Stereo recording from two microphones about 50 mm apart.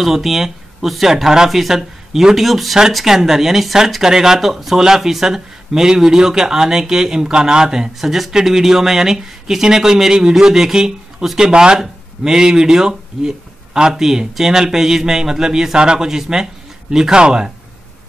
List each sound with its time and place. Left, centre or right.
0.0 s speech: centre